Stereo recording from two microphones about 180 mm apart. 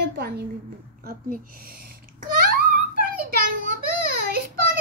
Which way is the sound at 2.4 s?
55° right (ahead or behind).